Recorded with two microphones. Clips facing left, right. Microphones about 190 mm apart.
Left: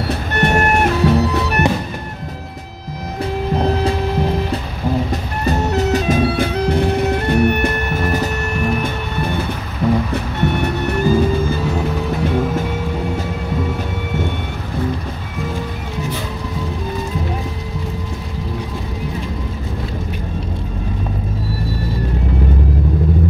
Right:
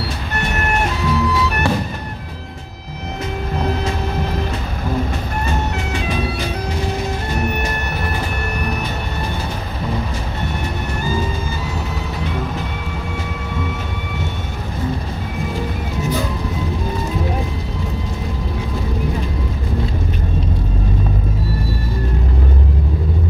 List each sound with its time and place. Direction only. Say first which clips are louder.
0.4 s music: left 6 dB; 60° left (ahead or behind)
1.6 s music: even; 20° left (ahead or behind)
5.4 s music: left 8 dB; 40° left (ahead or behind)
10.1 s music: left 6 dB; 65° left (ahead or behind)